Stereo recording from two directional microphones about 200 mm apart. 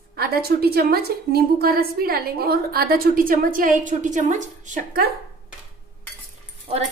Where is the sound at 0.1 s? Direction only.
50° right (ahead or behind).